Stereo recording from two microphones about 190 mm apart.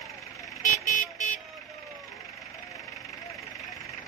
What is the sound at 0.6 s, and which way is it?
Vehicle, 40° left (ahead or behind).